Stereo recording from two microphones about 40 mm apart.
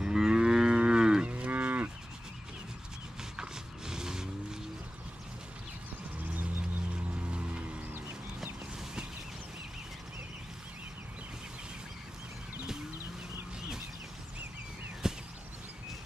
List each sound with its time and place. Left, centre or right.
0.0 s moo: centre
1.2 s moo: right
3.3 s vehicle: centre
7.2 s music: right
15.0 s a sound: centre